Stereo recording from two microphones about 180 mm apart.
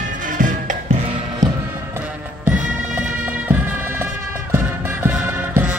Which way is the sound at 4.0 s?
10° right (ahead or behind).